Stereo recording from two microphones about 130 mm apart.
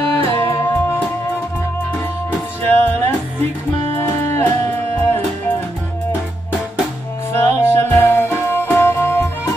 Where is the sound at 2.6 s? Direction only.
15° left (ahead or behind).